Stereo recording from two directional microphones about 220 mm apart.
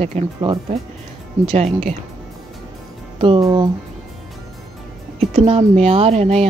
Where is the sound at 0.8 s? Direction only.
Centre (ahead or behind).